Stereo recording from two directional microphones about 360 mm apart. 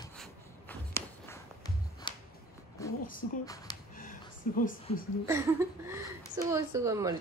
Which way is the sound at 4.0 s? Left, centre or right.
Left.